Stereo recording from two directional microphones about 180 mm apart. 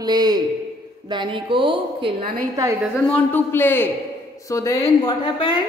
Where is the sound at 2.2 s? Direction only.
55° right (ahead or behind).